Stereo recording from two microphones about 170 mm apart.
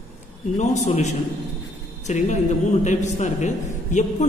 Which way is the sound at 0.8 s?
45° left (ahead or behind).